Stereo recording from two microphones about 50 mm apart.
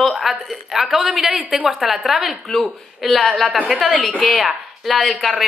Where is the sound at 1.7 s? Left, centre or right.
Centre.